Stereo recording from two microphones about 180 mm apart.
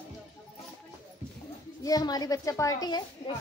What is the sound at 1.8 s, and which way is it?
A woman's voice, 20° left (ahead or behind).